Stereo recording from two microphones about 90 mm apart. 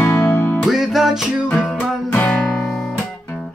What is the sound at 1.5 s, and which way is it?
Music, 15° left (ahead or behind).